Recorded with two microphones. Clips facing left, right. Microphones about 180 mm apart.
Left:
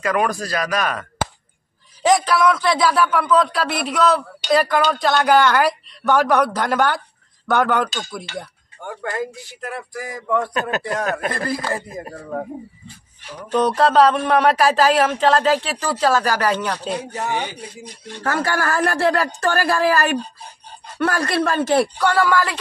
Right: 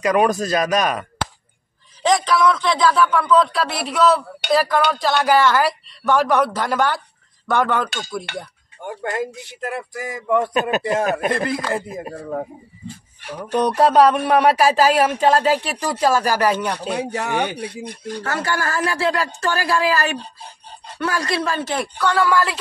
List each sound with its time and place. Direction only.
0.0 s speech: 20° right (ahead or behind)
2.0 s speech: 5° left (ahead or behind)
8.3 s speech: 65° right (ahead or behind)
8.8 s speech: 20° right (ahead or behind)
13.5 s speech: 10° right (ahead or behind)
16.9 s speech: 75° right (ahead or behind)
18.2 s a woman's voice: 55° left (ahead or behind)
22.1 s speech: centre (ahead or behind)